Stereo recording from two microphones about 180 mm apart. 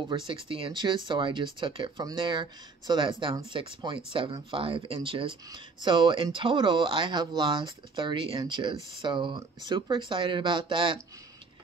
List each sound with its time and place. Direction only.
0.3 s speech: 30° right (ahead or behind)